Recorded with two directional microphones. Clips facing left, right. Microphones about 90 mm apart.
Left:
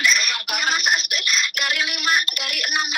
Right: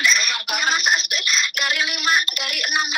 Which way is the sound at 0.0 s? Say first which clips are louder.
Even; 25° right (ahead or behind).